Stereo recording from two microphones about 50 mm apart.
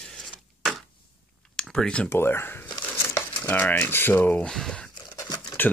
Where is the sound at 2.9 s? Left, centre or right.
Left.